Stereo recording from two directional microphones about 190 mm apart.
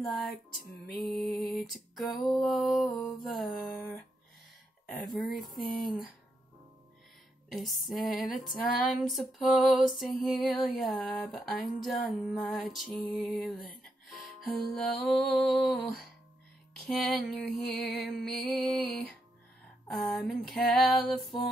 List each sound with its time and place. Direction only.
0.0 s music: centre (ahead or behind)
0.8 s music: 50° left (ahead or behind)
1.1 s music: centre (ahead or behind)
4.9 s music: centre (ahead or behind)
7.4 s music: centre (ahead or behind)
19.9 s music: centre (ahead or behind)